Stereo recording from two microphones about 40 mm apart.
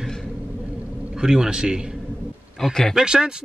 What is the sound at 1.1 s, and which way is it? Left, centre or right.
Speech, centre.